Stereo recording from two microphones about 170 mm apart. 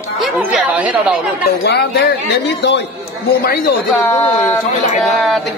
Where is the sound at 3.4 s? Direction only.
65° left (ahead or behind).